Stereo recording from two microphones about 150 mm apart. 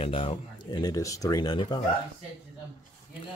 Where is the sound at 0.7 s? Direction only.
25° left (ahead or behind).